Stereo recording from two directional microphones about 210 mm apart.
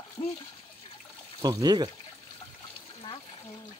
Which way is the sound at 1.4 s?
20° right (ahead or behind).